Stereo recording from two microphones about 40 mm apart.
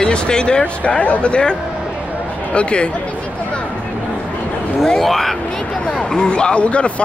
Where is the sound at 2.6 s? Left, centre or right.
Left.